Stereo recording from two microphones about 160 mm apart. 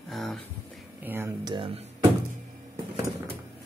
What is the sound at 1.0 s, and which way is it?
Speech, 15° right (ahead or behind).